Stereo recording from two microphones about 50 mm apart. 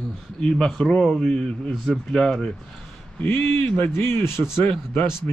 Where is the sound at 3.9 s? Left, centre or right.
Left.